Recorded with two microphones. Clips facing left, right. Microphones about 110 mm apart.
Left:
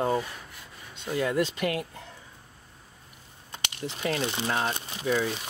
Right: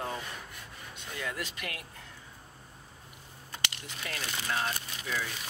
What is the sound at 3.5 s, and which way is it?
Speech, 25° left (ahead or behind).